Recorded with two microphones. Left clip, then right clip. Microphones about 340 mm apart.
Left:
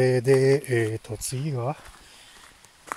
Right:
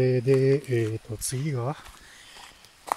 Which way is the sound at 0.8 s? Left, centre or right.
Left.